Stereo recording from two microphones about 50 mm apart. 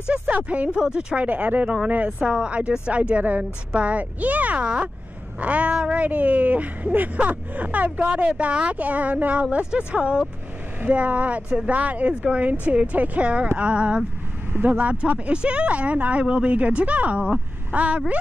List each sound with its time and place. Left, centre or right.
0.1 s speech: right
0.7 s speech: centre
1.1 s speech: right
2.2 s speech: centre